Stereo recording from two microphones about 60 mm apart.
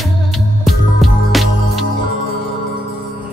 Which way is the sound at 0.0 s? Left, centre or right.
Centre.